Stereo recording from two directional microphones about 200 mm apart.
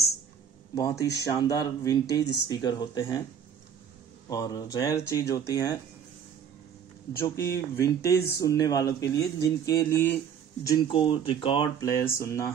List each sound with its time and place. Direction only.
0.7 s speech: 15° left (ahead or behind)
4.3 s speech: 20° left (ahead or behind)
7.2 s speech: 15° left (ahead or behind)
10.7 s speech: 25° left (ahead or behind)